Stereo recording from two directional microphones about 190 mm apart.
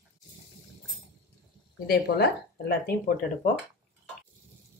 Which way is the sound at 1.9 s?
55° left (ahead or behind).